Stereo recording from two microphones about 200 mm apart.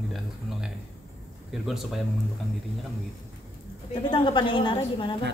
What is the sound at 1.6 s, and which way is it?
Speech, centre (ahead or behind).